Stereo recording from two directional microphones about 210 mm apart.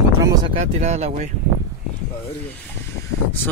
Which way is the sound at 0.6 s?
30° right (ahead or behind).